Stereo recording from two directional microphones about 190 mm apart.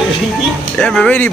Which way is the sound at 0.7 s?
5° left (ahead or behind).